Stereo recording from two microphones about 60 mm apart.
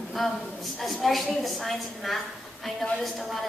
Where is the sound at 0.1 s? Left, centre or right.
Centre.